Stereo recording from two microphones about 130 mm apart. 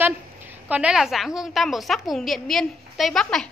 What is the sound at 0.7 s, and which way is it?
A woman's voice, 10° right (ahead or behind).